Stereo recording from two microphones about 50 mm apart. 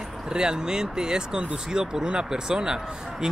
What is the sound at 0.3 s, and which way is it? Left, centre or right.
Speech, centre.